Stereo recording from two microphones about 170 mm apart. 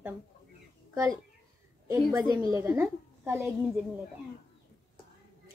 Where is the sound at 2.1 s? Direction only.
20° right (ahead or behind).